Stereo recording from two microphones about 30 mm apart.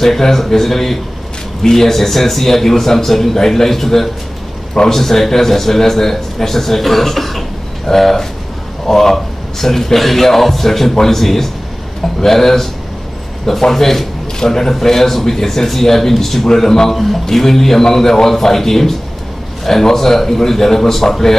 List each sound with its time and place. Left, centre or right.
0.0 s a man's voice: centre
16.9 s a man's voice: centre